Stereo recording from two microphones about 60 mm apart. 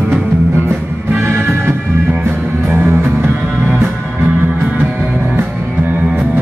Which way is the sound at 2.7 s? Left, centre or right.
Right.